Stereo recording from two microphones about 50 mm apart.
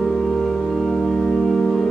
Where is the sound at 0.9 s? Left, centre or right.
Centre.